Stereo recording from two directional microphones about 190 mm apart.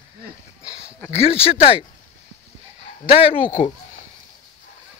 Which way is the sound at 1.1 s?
30° left (ahead or behind).